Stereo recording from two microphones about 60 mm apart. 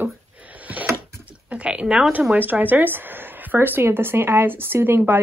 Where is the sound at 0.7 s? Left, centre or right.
Right.